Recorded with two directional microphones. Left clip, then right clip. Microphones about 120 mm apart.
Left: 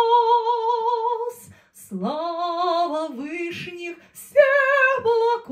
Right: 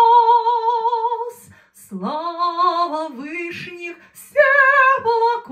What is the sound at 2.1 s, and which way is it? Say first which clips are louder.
Female singing: right 3 dB; 20° left (ahead or behind).